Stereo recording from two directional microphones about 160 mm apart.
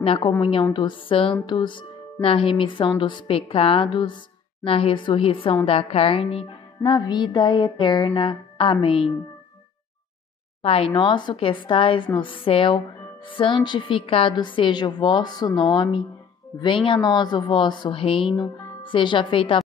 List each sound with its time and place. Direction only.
0.0 s a woman's voice: 35° left (ahead or behind)
10.6 s a woman's voice: 35° left (ahead or behind)